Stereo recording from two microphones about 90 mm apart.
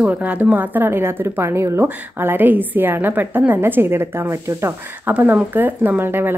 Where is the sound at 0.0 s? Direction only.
15° right (ahead or behind).